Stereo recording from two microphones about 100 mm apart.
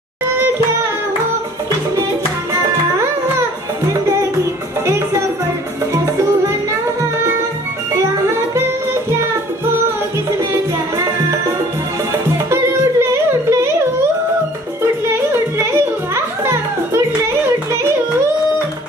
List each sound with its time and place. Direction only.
4.8 s music: 30° right (ahead or behind)
13.0 s music: 30° right (ahead or behind)
15.0 s music: 25° right (ahead or behind)